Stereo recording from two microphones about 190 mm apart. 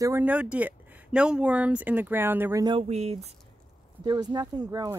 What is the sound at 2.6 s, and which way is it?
Speech, 30° right (ahead or behind).